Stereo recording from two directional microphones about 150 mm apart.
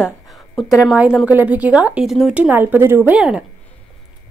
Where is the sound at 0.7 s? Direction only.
10° right (ahead or behind).